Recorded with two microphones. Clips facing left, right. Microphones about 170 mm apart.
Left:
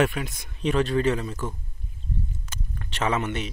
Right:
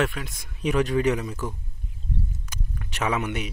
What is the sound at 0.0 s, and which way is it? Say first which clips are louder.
Speech: left 3 dB; 5° left (ahead or behind).